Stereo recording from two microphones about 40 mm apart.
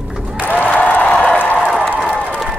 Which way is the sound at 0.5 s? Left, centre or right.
Left.